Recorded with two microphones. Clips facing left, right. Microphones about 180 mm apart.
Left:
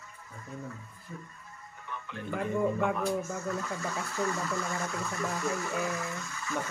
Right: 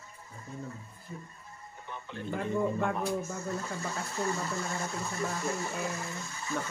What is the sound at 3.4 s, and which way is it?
Speech, 30° right (ahead or behind).